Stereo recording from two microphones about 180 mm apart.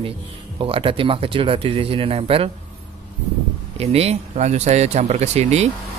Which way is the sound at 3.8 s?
35° right (ahead or behind).